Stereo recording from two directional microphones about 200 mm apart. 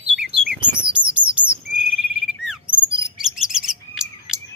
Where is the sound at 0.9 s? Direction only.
5° right (ahead or behind).